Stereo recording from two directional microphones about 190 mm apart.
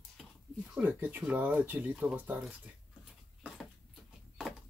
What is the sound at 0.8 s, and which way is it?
Speech, 10° right (ahead or behind).